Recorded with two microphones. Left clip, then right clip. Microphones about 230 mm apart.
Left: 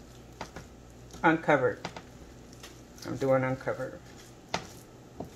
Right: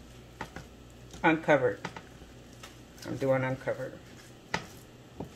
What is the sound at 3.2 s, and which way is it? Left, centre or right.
Speech, centre.